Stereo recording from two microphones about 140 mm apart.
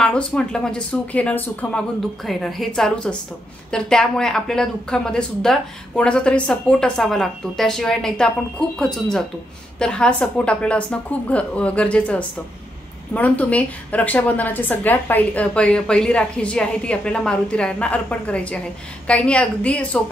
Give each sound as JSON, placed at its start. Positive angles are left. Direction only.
{"t": 0.0, "sound": "a woman's voice", "side_deg": 5}